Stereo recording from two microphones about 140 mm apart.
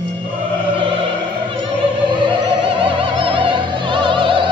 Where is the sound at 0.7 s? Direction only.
40° right (ahead or behind).